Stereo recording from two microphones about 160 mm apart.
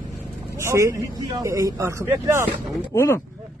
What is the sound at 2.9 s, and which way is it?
Speech, 15° left (ahead or behind).